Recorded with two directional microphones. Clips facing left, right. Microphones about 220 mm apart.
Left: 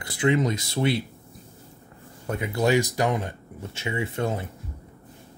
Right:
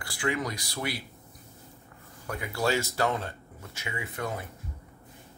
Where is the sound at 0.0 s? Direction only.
20° left (ahead or behind).